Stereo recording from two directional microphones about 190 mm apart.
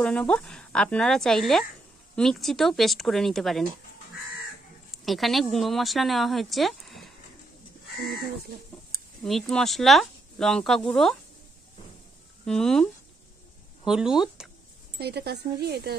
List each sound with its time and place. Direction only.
0.0 s speech: 5° left (ahead or behind)
4.9 s speech: centre (ahead or behind)
9.2 s speech: 5° left (ahead or behind)
12.4 s speech: 5° left (ahead or behind)
13.8 s speech: 5° right (ahead or behind)
15.0 s speech: 60° right (ahead or behind)